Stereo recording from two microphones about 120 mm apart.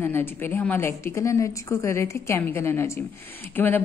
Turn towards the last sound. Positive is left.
turn(degrees=15)  # may be behind; listen again after turning